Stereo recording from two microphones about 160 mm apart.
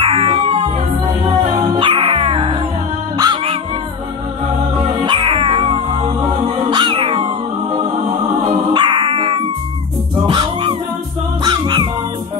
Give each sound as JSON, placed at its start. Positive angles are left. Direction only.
{"t": 0.0, "sound": "music", "side_deg": -35}
{"t": 1.8, "sound": "music", "side_deg": -30}
{"t": 3.2, "sound": "dog", "side_deg": -30}
{"t": 5.0, "sound": "music", "side_deg": -30}
{"t": 6.7, "sound": "cat", "side_deg": -30}
{"t": 8.7, "sound": "dog", "side_deg": -30}
{"t": 10.2, "sound": "music", "side_deg": -30}